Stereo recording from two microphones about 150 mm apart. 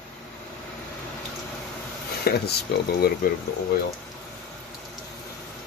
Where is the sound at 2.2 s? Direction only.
90° left.